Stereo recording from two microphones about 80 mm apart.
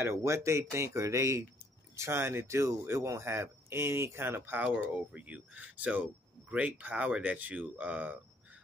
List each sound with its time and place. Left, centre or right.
0.0 s speech: right; by 8.2 s centre